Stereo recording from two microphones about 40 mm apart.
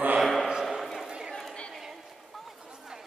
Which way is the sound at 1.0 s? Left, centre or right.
Centre.